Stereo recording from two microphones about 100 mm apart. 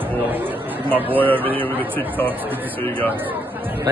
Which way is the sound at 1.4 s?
65° right (ahead or behind).